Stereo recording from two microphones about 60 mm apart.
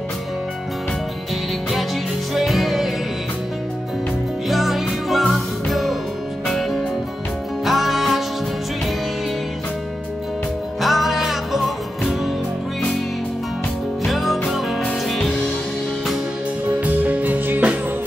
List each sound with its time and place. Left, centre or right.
2.3 s music: centre
4.5 s music: centre
10.8 s music: centre
14.0 s music: centre
16.8 s music: right